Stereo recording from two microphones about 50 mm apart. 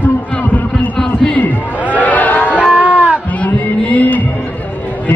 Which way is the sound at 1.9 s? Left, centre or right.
Left.